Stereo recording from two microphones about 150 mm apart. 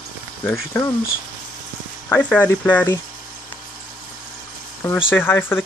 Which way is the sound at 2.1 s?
10° left (ahead or behind).